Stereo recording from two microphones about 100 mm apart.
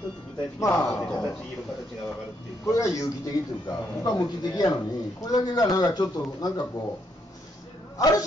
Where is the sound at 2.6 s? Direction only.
30° left (ahead or behind).